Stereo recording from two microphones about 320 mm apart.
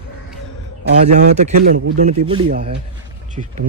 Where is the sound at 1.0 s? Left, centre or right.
Right.